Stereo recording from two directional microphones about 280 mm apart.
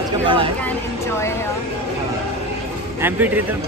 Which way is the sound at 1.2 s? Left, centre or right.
Centre.